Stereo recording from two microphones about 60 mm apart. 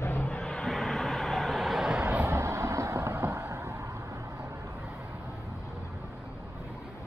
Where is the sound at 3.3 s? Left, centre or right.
Right.